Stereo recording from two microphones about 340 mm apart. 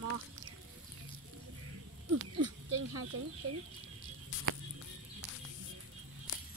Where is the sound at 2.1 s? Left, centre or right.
Right.